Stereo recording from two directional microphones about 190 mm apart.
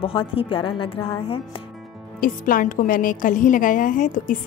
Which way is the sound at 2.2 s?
45° left (ahead or behind).